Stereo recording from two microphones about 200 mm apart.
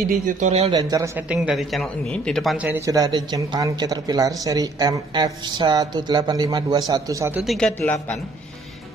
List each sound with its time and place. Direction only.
0.3 s speech: 35° right (ahead or behind)
0.7 s speech: 15° right (ahead or behind)
1.3 s speech: 5° right (ahead or behind)
7.4 s a man's voice: 5° left (ahead or behind)